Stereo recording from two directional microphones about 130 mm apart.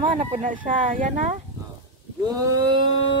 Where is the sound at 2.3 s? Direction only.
30° right (ahead or behind).